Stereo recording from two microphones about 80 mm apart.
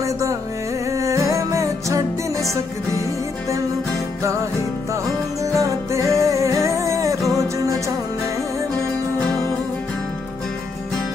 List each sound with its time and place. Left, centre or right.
0.0 s music: right
5.4 s music: right